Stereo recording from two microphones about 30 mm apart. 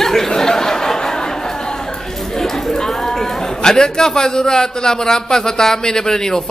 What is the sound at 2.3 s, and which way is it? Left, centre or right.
A man's voice, centre.